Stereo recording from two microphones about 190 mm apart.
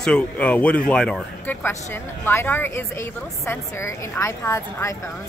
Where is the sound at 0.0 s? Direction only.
5° left (ahead or behind).